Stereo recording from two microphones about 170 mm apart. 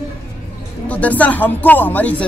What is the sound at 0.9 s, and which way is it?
Speech, 10° left (ahead or behind).